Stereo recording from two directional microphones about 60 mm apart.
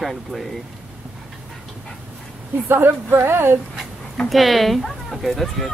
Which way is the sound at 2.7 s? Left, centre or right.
Right.